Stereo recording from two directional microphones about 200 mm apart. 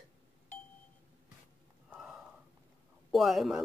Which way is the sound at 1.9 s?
Centre (ahead or behind).